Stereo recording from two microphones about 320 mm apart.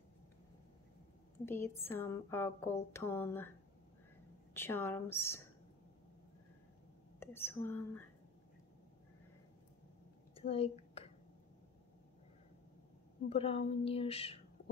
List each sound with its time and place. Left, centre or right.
1.4 s speech: centre
4.6 s speech: centre
7.2 s speech: centre
10.3 s a sound: centre
13.3 s speech: centre